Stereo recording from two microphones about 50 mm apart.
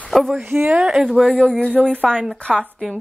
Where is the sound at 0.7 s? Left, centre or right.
Centre.